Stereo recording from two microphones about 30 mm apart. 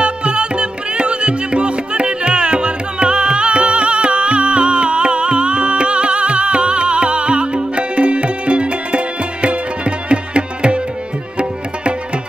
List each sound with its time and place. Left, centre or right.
0.0 s music: right